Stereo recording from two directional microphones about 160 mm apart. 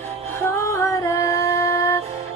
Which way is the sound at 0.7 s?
20° left (ahead or behind).